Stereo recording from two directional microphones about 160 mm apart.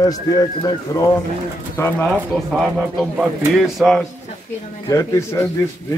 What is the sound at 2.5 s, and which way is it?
A man's voice, 5° right (ahead or behind).